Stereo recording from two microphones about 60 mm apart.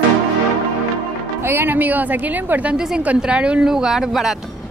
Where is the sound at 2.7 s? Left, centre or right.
Centre.